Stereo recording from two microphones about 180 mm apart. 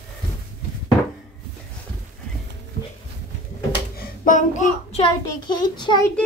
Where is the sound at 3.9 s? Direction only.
50° left (ahead or behind).